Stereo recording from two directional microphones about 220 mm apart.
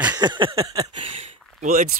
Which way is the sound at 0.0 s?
20° right (ahead or behind).